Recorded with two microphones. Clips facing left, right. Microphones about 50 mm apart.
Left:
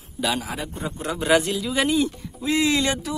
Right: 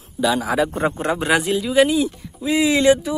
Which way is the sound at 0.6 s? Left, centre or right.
Right.